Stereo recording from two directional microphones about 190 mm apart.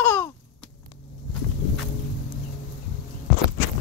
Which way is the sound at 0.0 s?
15° left (ahead or behind).